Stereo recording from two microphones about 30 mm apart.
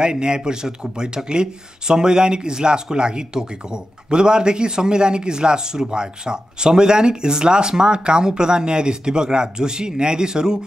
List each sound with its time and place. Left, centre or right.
0.0 s speech: right